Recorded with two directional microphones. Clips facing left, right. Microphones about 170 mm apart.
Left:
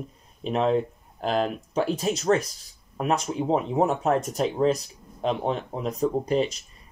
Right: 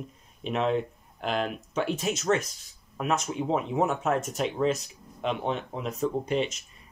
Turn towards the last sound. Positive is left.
turn(degrees=35)  # may be behind; listen again after turning